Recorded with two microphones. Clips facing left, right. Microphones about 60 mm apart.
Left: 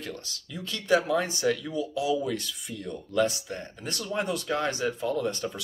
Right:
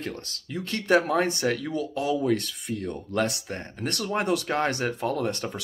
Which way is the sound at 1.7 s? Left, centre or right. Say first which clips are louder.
Right 1 dB; right.